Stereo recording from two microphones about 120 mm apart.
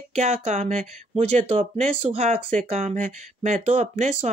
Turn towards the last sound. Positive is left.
turn(degrees=-70)  # may be behind; listen again after turning